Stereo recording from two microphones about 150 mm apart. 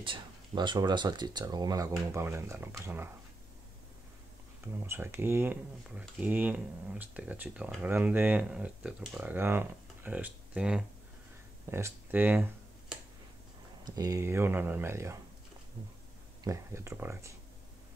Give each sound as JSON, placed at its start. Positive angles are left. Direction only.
{"t": 0.0, "sound": "speech", "side_deg": -35}
{"t": 4.8, "sound": "speech", "side_deg": -15}
{"t": 13.8, "sound": "speech", "side_deg": -25}
{"t": 16.4, "sound": "speech", "side_deg": -20}